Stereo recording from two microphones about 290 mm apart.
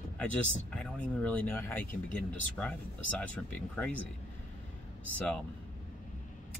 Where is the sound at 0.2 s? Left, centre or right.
Centre.